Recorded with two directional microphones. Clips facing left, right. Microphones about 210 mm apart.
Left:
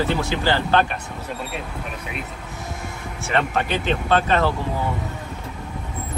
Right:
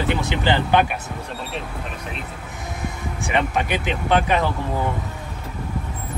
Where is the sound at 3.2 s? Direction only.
15° right (ahead or behind).